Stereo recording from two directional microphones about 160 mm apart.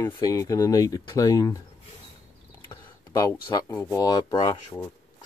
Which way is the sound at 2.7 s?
20° left (ahead or behind).